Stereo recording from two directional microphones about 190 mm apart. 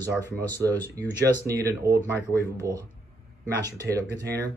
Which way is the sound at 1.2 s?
15° right (ahead or behind).